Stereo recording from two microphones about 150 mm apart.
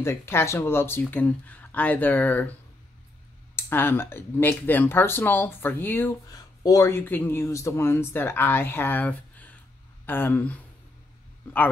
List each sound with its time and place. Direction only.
0.0 s speech: 15° left (ahead or behind)
3.5 s speech: 15° left (ahead or behind)
6.2 s speech: 25° left (ahead or behind)